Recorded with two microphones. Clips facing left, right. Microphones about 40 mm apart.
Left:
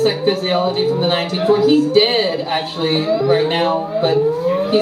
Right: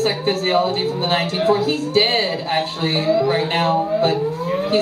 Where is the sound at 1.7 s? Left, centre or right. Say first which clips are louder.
Left 5 dB; left.